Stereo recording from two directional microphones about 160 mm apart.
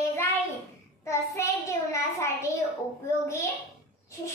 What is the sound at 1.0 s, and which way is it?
Child singing, 20° left (ahead or behind).